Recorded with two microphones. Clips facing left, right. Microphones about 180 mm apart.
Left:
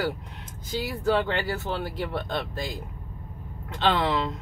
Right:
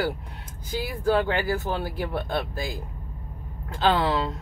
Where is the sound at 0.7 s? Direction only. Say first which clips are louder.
Right 1 dB; 10° right (ahead or behind).